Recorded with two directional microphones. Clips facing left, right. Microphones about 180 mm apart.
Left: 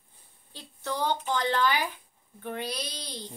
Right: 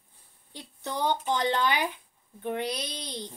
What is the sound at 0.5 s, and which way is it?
Speech, 20° right (ahead or behind).